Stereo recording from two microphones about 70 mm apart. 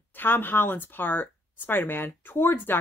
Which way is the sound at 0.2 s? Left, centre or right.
Left.